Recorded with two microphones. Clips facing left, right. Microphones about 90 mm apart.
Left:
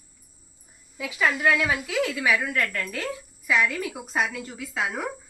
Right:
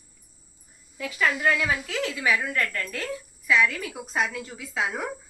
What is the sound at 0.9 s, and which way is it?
A woman's voice, 5° left (ahead or behind).